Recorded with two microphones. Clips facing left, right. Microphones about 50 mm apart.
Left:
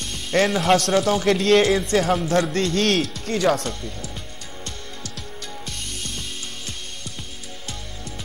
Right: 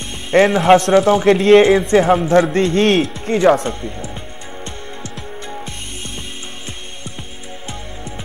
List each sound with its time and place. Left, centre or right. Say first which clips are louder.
0.1 s speech: right 7 dB; right